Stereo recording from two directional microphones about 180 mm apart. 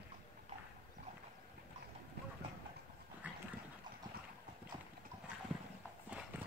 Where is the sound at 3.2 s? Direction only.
10° right (ahead or behind).